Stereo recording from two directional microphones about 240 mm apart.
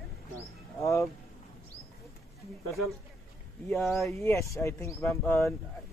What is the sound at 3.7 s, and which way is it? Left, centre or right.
Speech, centre.